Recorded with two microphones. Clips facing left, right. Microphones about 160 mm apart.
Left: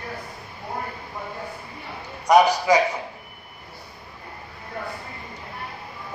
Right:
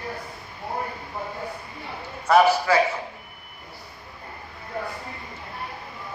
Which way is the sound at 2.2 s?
15° left (ahead or behind).